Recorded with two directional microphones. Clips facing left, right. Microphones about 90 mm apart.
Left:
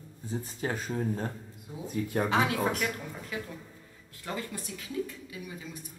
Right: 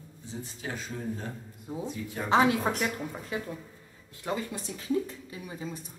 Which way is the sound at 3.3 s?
30° right (ahead or behind).